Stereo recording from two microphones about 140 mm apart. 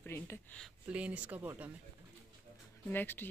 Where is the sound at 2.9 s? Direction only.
15° left (ahead or behind).